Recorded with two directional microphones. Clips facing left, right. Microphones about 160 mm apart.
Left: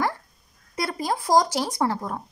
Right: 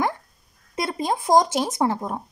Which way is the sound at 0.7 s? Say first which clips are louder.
Right 2 dB; 20° right (ahead or behind).